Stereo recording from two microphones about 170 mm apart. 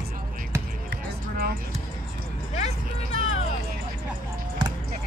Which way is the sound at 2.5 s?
40° left (ahead or behind).